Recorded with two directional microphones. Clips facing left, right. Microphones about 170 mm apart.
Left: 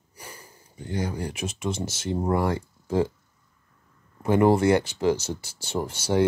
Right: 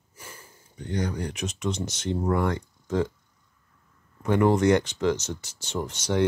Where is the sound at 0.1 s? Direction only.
15° left (ahead or behind).